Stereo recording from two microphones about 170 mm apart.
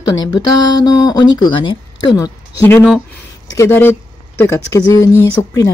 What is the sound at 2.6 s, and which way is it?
A woman's voice, 10° left (ahead or behind).